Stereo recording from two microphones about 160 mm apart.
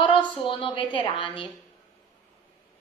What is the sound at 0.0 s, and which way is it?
A woman's voice, 30° left (ahead or behind).